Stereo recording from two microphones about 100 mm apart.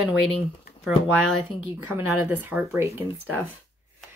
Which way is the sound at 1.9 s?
20° right (ahead or behind).